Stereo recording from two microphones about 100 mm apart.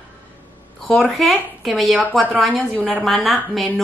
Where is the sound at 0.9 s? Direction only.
Centre (ahead or behind).